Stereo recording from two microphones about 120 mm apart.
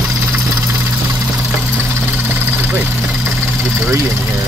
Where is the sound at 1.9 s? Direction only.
15° right (ahead or behind).